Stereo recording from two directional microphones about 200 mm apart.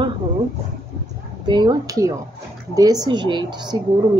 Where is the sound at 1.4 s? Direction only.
20° right (ahead or behind).